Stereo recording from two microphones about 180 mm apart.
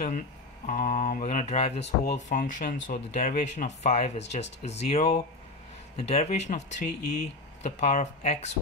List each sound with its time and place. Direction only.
0.7 s speech: 45° left (ahead or behind)